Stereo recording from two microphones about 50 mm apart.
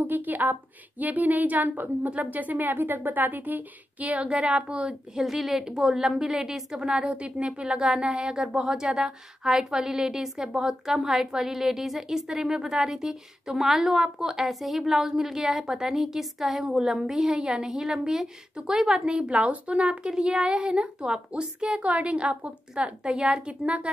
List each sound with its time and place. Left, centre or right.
0.0 s a woman's voice: right
4.3 s a woman's voice: right
5.2 s a woman's voice: centre; by 23.9 s right